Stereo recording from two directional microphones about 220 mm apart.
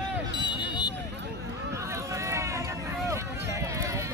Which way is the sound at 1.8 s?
15° right (ahead or behind).